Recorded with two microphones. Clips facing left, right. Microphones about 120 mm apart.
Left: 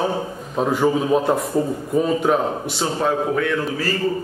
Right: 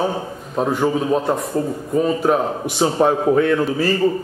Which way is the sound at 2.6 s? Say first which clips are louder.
Right 5 dB; 15° right (ahead or behind).